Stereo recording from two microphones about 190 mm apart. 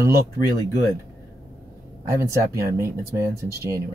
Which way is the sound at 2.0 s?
15° right (ahead or behind).